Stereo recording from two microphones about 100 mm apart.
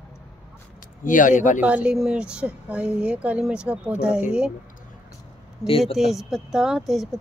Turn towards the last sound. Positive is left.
turn(degrees=-5)  # may be behind; listen again after turning